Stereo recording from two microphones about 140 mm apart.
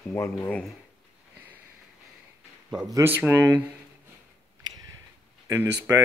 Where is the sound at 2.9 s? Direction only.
20° right (ahead or behind).